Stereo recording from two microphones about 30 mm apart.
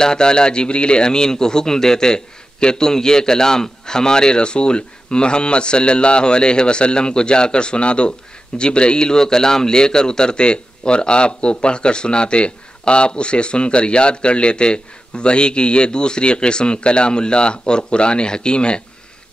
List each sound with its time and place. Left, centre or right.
0.0 s a man's voice: left
9.2 s a man's voice: centre